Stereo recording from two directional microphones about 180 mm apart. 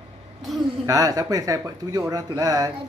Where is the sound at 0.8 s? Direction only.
20° right (ahead or behind).